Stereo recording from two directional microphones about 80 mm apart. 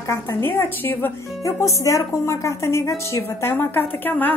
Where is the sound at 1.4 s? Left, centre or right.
Left.